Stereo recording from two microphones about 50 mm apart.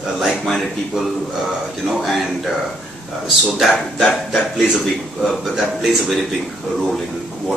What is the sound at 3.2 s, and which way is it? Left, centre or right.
Speech, centre.